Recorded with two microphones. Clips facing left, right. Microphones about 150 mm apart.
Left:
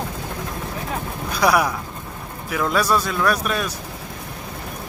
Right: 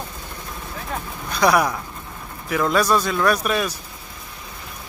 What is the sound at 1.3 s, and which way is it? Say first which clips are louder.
Speech: right 1 dB; 5° left (ahead or behind).